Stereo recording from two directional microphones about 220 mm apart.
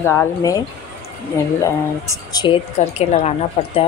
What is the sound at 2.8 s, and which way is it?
A woman's voice, 30° left (ahead or behind).